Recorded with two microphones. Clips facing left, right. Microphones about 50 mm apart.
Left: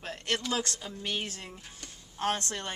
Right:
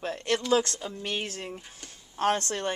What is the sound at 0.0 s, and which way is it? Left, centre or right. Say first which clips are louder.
Speech: right 4 dB; right.